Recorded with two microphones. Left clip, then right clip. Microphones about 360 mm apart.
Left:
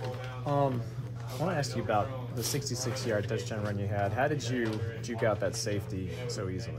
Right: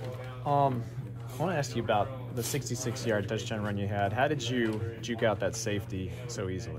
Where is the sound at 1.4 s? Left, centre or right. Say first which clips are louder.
Right 1 dB; centre.